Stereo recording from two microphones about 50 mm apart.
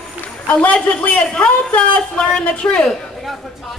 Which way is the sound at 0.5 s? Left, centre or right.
Left.